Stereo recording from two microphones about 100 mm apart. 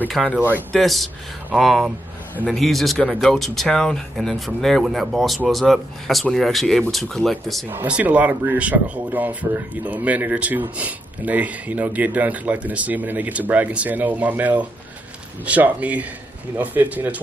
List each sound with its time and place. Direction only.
0.2 s speech: 5° right (ahead or behind)
7.7 s speech: 15° right (ahead or behind)